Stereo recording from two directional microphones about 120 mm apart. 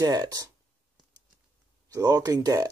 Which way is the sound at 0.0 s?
30° right (ahead or behind).